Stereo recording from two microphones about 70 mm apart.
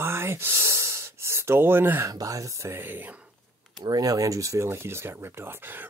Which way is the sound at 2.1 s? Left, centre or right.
Right.